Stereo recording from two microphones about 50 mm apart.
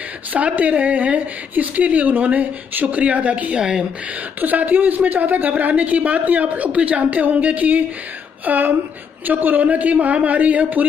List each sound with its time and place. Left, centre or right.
0.3 s speech: right